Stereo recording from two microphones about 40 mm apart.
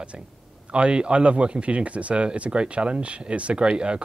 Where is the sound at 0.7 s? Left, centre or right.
Right.